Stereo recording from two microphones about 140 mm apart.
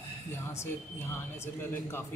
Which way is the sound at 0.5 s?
20° left (ahead or behind).